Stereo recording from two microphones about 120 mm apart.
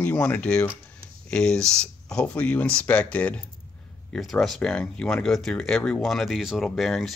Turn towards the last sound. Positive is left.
turn(degrees=0)  # may be behind; listen again after turning